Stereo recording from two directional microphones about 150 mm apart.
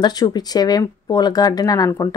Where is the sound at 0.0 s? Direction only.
25° left (ahead or behind).